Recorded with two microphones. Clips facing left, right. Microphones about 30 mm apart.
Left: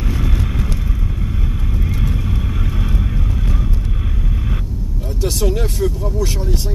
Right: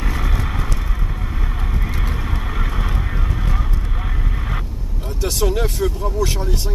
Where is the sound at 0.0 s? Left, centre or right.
Right.